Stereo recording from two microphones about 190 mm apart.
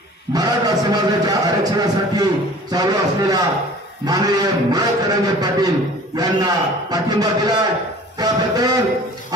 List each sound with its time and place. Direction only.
0.3 s a man's voice: 20° right (ahead or behind)